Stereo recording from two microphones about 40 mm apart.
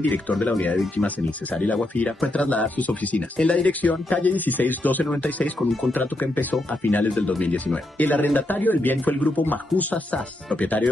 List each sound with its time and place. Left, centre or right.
0.1 s speech: left